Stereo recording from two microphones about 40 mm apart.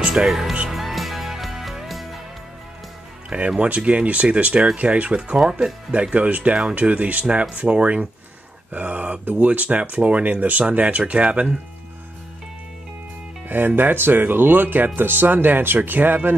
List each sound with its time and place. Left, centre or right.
0.0 s music: right
0.3 s speech: centre
0.7 s music: centre
3.3 s speech: right
5.3 s speech: right
6.1 s speech: right
13.5 s speech: right